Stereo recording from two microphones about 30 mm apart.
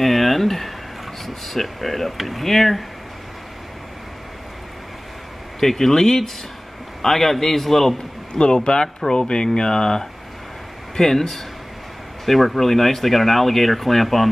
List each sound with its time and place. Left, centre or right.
0.0 s speech: centre
5.6 s a man's voice: centre
8.3 s speech: left
11.0 s a man's voice: centre